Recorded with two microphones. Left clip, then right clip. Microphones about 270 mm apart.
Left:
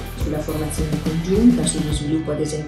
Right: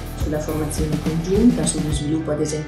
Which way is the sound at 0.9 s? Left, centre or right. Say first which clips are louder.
Even; centre.